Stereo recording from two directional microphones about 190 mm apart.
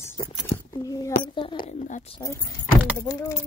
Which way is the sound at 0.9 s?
20° left (ahead or behind).